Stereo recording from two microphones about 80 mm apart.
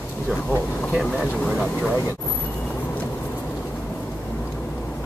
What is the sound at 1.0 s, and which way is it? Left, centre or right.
Speech, centre.